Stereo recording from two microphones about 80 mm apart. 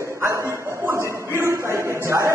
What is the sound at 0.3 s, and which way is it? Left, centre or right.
Bow-wow, right.